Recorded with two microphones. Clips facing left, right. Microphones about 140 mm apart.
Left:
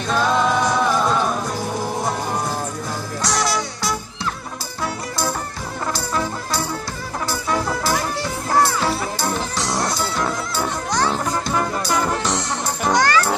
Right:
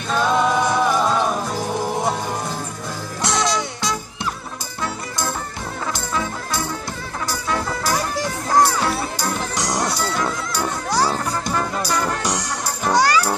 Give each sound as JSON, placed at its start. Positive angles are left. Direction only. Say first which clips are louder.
{"t": 0.1, "sound": "music", "louder": "even", "side_deg": -5}
{"t": 3.3, "sound": "music", "louder": "right 1 dB", "side_deg": 5}
{"t": 7.4, "sound": "music", "louder": "left 1 dB", "side_deg": 5}
{"t": 9.6, "sound": "music", "louder": "right 2 dB", "side_deg": -15}
{"t": 9.9, "sound": "music", "louder": "even", "side_deg": 5}
{"t": 10.9, "sound": "music", "louder": "right 1 dB", "side_deg": -10}